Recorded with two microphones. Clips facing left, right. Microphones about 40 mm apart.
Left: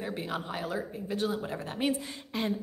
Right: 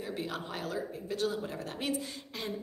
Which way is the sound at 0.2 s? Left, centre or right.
Centre.